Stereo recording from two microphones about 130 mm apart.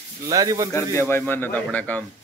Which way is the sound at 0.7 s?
20° left (ahead or behind).